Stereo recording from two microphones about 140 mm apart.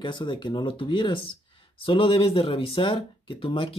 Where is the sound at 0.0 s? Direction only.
35° left (ahead or behind).